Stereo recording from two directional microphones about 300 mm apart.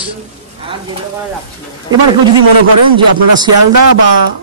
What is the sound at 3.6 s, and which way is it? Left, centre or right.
Speech, right.